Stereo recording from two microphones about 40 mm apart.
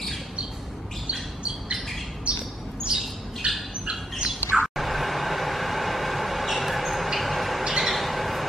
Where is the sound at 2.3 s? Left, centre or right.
Right.